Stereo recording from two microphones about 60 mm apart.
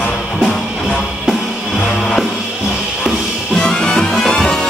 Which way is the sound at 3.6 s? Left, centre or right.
Centre.